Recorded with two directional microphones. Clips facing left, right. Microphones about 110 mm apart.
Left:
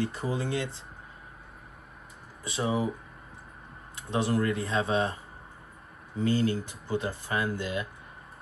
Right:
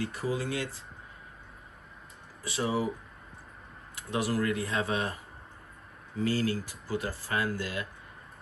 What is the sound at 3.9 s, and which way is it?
Speech, 25° left (ahead or behind).